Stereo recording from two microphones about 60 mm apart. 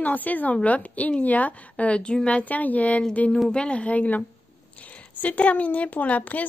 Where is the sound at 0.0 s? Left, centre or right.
Left.